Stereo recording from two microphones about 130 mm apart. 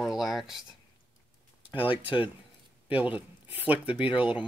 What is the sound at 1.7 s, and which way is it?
Speech, 40° left (ahead or behind).